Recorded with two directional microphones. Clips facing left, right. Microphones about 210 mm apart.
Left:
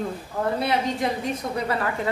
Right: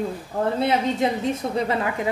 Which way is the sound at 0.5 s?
25° right (ahead or behind).